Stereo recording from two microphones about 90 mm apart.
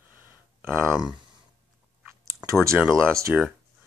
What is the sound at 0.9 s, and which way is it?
Speech, 5° right (ahead or behind).